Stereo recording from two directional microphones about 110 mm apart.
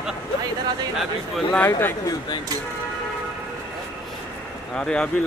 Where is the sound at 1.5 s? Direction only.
20° left (ahead or behind).